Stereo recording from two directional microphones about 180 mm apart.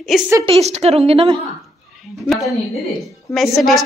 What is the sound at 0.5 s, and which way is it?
Speech, 35° right (ahead or behind).